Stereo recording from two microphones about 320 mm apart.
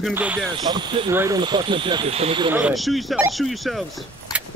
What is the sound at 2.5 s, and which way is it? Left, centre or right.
Speech, centre.